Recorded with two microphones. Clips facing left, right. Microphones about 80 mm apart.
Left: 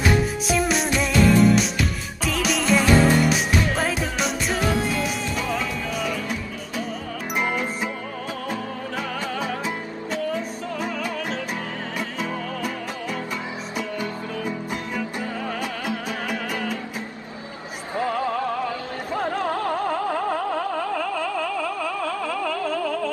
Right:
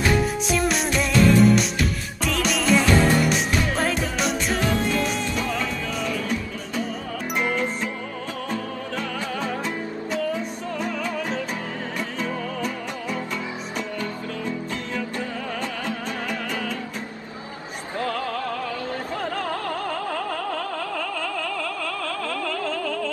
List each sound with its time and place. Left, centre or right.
0.5 s music: centre
7.3 s music: centre
17.9 s music: centre